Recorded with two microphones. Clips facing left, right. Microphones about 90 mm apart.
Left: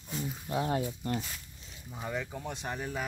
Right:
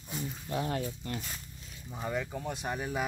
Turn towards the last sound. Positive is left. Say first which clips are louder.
# right 2 dB
turn(degrees=-5)  # may be behind; listen again after turning